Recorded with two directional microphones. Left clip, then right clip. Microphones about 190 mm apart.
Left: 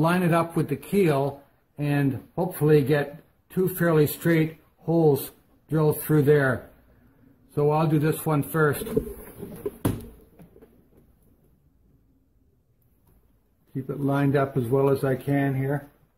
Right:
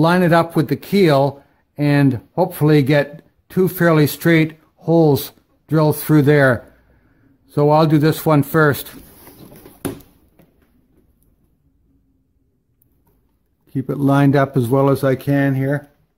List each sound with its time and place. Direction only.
0.0 s speech: 35° right (ahead or behind)
7.5 s speech: 40° right (ahead or behind)
13.8 s speech: 45° right (ahead or behind)